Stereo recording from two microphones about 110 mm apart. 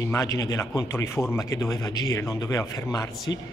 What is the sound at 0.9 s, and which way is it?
A man's voice, 25° left (ahead or behind).